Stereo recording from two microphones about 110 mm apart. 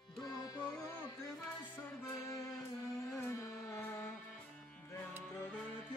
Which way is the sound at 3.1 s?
20° left (ahead or behind).